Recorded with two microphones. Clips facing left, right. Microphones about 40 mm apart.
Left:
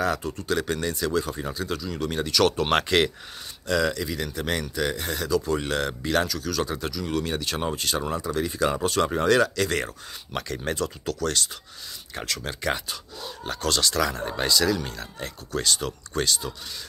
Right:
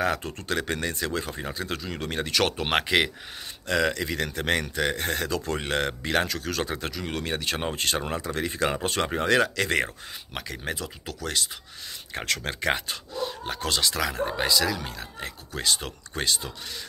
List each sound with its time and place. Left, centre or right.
0.0 s speech: right
0.3 s speech: right
0.6 s speech: right
2.5 s speech: centre
3.6 s speech: right
5.6 s speech: right
6.2 s speech: right
9.8 s speech: centre
12.4 s speech: right; by 15.7 s centre
15.8 s speech: right